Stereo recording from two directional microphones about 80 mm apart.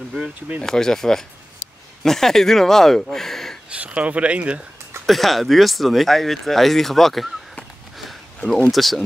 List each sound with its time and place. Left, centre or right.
0.6 s speech: centre
3.7 s speech: centre
5.0 s speech: centre